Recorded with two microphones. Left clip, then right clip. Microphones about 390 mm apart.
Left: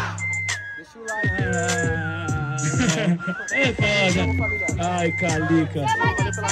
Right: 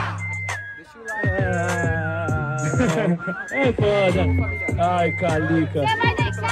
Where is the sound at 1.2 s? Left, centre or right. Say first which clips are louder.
Right 1 dB; centre.